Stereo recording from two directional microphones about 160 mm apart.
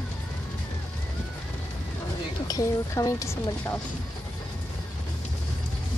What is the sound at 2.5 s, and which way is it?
A woman's voice, 20° left (ahead or behind).